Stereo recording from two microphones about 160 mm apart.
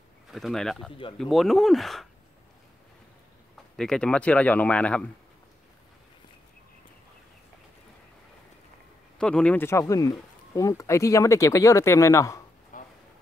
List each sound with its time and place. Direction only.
0.3 s speech: centre (ahead or behind)
3.7 s speech: 5° left (ahead or behind)
9.2 s speech: 5° left (ahead or behind)
12.7 s a sound: 55° left (ahead or behind)